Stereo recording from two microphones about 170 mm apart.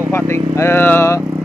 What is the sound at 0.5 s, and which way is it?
Speech, 15° left (ahead or behind).